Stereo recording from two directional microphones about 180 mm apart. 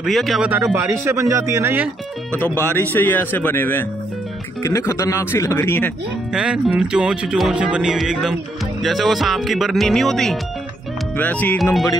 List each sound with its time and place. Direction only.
0.0 s speech: centre (ahead or behind)
0.7 s speech: 15° right (ahead or behind)
2.6 s speech: 10° left (ahead or behind)
6.3 s speech: 5° right (ahead or behind)